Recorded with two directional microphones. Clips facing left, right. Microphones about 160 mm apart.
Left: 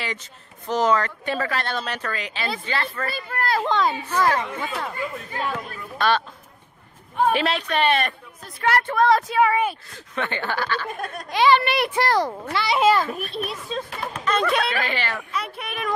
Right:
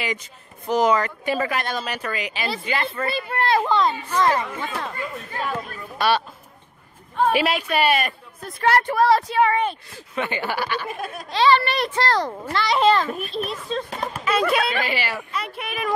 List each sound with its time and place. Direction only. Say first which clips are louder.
0.0 s speech: right 3 dB; 10° right (ahead or behind)
3.3 s a child's voice: right 3 dB; 25° right (ahead or behind)
3.6 s speech: right 1 dB; centre (ahead or behind)
5.5 s speech: right 1 dB; 10° right (ahead or behind)
7.3 s speech: right 2 dB; 10° right (ahead or behind)
8.5 s a woman's voice: right 2 dB; 35° right (ahead or behind)
8.8 s speech: right 1 dB; 5° right (ahead or behind)
9.9 s speech: right 1 dB; 10° right (ahead or behind)
11.2 s a child's voice: even; 15° left (ahead or behind); by 15.9 s centre (ahead or behind)